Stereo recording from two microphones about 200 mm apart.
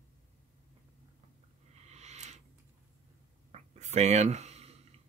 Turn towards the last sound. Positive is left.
turn(degrees=-35)  # may be behind; listen again after turning